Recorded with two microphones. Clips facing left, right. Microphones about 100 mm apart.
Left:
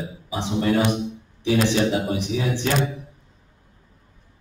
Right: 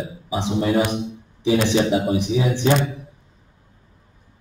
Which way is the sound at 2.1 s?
20° right (ahead or behind).